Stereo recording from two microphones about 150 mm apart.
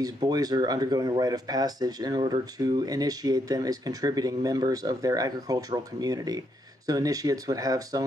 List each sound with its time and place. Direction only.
0.0 s speech: 25° right (ahead or behind)